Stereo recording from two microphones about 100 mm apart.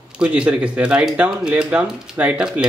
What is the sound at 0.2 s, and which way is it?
Speech, 10° right (ahead or behind).